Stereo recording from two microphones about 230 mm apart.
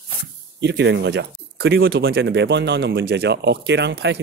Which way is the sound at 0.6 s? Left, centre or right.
Right.